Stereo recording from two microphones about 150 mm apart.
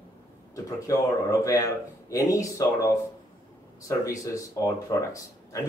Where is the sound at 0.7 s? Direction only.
20° left (ahead or behind).